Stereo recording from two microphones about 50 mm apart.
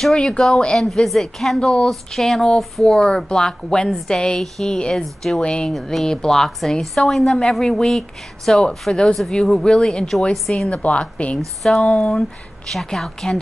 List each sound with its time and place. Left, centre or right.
0.0 s a woman's voice: centre
0.7 s a woman's voice: centre
4.7 s a woman's voice: centre
5.0 s a woman's voice: centre
5.4 s a woman's voice: centre
5.7 s a woman's voice: centre
10.7 s a woman's voice: left
11.3 s a woman's voice: centre